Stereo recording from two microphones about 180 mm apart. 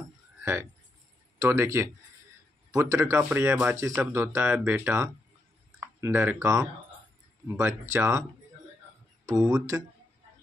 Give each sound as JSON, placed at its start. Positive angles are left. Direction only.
{"t": 0.4, "sound": "speech", "side_deg": -15}
{"t": 9.4, "sound": "speech", "side_deg": -20}